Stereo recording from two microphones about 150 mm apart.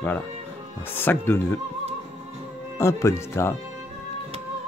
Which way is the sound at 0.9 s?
15° left (ahead or behind).